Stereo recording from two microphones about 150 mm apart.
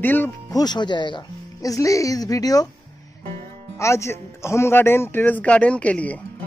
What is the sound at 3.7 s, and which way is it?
Speech, 20° left (ahead or behind).